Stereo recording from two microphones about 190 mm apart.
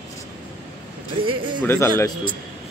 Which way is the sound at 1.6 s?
10° left (ahead or behind).